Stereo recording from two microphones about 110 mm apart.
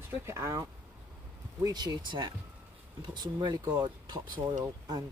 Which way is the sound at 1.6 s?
40° right (ahead or behind).